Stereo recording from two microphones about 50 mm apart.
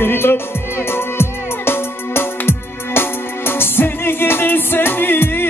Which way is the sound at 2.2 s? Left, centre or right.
Left.